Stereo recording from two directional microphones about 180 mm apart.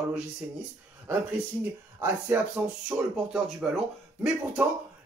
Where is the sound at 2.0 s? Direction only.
10° right (ahead or behind).